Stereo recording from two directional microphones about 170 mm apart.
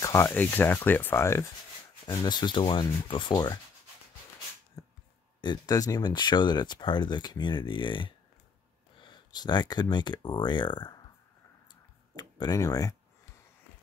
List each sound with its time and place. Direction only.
0.0 s speech: 15° left (ahead or behind)
2.0 s speech: 25° left (ahead or behind)
4.8 s a sound: 20° left (ahead or behind)
5.4 s speech: 25° left (ahead or behind)
12.2 s speech: 25° left (ahead or behind)